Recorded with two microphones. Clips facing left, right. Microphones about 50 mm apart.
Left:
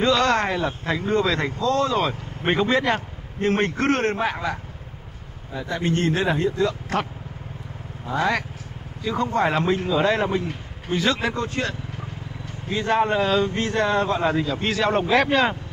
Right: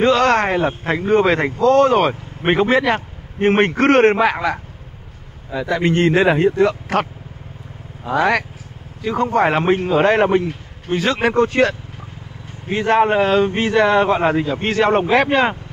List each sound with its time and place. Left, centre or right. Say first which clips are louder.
0.0 s speech: right 5 dB; right
2.4 s speech: right 5 dB; right
3.5 s a man's voice: right 9 dB; right
9.0 s speech: right 5 dB; right
11.2 s a man's voice: right 10 dB; right
12.6 s speech: right 6 dB; right
14.3 s speech: right 5 dB; right